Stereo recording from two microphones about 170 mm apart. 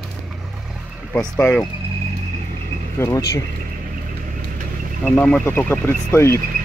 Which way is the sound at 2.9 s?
15° left (ahead or behind).